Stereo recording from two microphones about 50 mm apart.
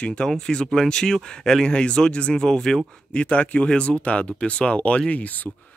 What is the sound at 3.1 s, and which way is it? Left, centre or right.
Speech, left.